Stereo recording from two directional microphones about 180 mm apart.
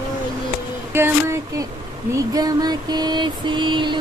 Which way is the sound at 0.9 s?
15° right (ahead or behind).